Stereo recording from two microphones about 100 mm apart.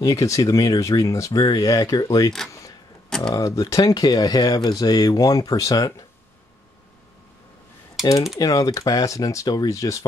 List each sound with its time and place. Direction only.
0.0 s speech: 35° left (ahead or behind)
3.1 s a sound: 5° left (ahead or behind)
3.3 s speech: 35° left (ahead or behind)
8.0 s speech: 35° left (ahead or behind)